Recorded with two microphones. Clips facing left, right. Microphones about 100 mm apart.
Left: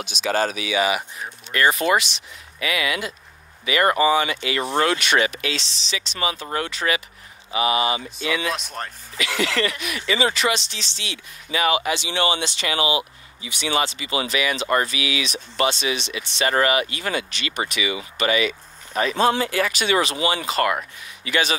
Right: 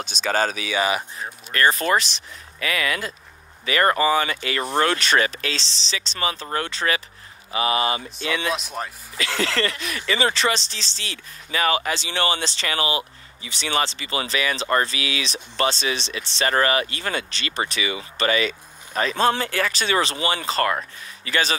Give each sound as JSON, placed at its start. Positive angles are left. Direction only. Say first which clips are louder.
{"t": 0.0, "sound": "speech", "louder": "even", "side_deg": -35}
{"t": 7.5, "sound": "speech", "louder": "left 1 dB", "side_deg": 20}
{"t": 8.2, "sound": "speech", "louder": "left 1 dB", "side_deg": -35}
{"t": 8.5, "sound": "speech", "louder": "right 1 dB", "side_deg": 0}
{"t": 9.2, "sound": "speech", "louder": "left 1 dB", "side_deg": -35}